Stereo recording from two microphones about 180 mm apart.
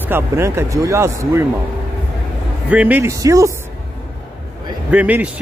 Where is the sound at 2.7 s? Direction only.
10° right (ahead or behind).